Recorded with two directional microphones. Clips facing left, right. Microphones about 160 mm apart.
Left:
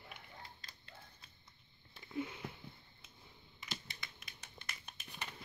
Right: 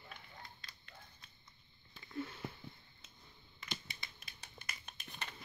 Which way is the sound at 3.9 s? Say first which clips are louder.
Left 1 dB; 30° right (ahead or behind).